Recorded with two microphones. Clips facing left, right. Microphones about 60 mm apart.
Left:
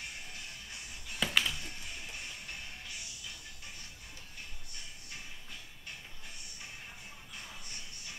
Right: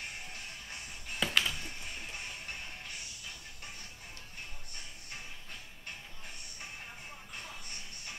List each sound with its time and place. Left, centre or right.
1.2 s music: centre
1.6 s music: right